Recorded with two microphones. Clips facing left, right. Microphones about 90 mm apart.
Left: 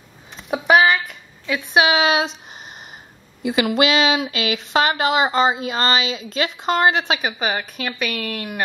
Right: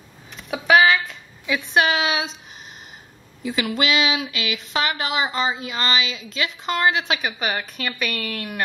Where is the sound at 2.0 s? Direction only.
45° left (ahead or behind).